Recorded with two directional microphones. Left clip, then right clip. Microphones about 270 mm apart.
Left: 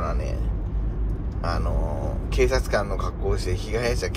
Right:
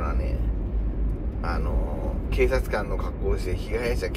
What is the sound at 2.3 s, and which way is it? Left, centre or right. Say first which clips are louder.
Speech: left 2 dB; centre.